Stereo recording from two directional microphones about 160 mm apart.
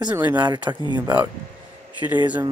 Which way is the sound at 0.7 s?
25° right (ahead or behind).